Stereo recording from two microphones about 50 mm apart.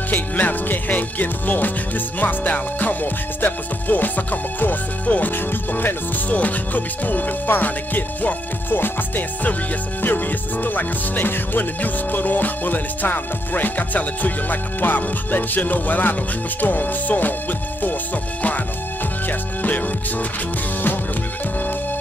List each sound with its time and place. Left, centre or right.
0.1 s music: left
19.2 s music: left